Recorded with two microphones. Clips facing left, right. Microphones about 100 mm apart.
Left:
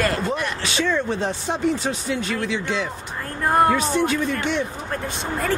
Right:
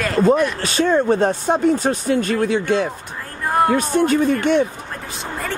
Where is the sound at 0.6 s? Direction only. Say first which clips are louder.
Right 4 dB; 45° right (ahead or behind).